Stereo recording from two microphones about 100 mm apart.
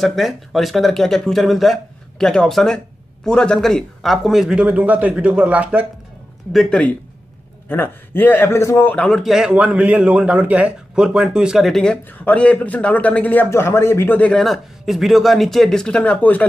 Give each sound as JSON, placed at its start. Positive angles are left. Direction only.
{"t": 0.0, "sound": "speech", "side_deg": 0}
{"t": 6.5, "sound": "speech", "side_deg": 0}
{"t": 7.6, "sound": "a man's voice", "side_deg": 20}
{"t": 8.9, "sound": "a man's voice", "side_deg": 10}
{"t": 9.2, "sound": "a man's voice", "side_deg": -5}
{"t": 14.4, "sound": "speech", "side_deg": 0}